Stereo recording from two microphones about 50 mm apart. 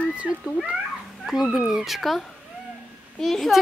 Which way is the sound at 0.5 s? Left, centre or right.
Right.